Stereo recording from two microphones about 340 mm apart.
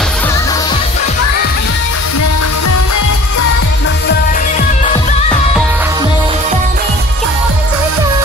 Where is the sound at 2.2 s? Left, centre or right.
Left; by 5.3 s centre.